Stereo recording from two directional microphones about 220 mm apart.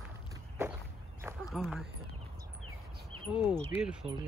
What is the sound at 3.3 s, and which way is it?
Speech, centre (ahead or behind).